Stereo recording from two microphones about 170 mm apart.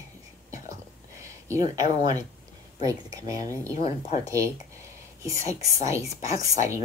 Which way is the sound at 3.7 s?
40° left (ahead or behind).